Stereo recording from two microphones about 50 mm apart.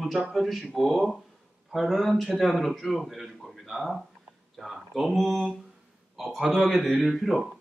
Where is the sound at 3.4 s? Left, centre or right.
Centre.